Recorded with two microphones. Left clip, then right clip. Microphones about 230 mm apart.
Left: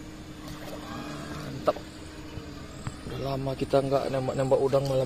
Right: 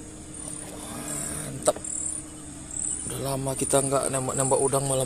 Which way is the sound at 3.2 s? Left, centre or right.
Right.